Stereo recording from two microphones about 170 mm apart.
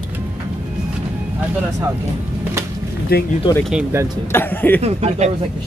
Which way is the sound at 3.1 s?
65° left (ahead or behind).